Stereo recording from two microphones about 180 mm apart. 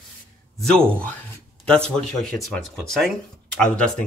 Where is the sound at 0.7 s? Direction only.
5° left (ahead or behind).